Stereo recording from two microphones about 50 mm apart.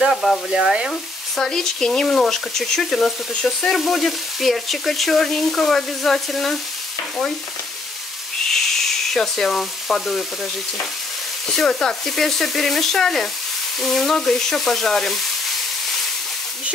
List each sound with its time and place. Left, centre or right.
0.1 s frying: centre
0.8 s speech: centre
3.4 s frying: centre
8.5 s sizzle: centre
11.5 s speech: centre